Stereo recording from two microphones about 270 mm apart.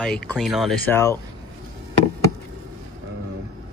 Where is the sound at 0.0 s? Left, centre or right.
Centre.